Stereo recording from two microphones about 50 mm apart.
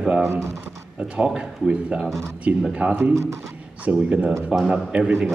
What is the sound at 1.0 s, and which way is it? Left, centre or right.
Speech, right.